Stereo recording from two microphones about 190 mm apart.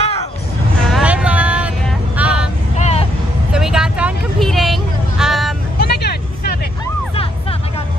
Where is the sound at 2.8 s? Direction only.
35° left (ahead or behind).